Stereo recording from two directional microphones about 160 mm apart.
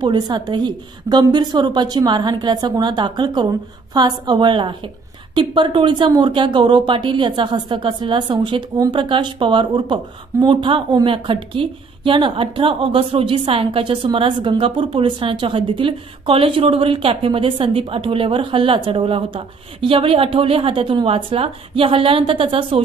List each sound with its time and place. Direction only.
0.0 s a woman's voice: 30° right (ahead or behind)